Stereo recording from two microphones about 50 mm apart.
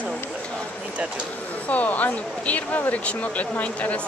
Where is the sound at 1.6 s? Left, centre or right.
Left.